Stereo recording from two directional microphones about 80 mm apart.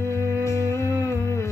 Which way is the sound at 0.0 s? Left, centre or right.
Left.